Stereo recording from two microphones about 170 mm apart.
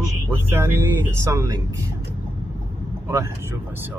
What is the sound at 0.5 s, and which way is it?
Speech, 10° right (ahead or behind).